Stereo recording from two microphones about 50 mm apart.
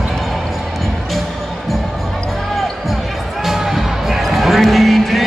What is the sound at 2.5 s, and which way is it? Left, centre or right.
Basketball bounce, centre.